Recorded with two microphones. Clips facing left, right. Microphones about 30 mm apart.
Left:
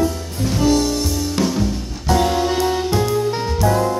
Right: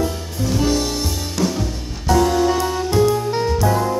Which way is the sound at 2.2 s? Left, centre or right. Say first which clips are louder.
Right 2 dB; left.